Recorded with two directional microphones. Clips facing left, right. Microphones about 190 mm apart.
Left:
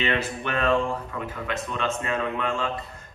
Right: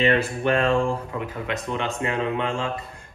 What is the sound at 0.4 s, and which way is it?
Speech, 30° right (ahead or behind).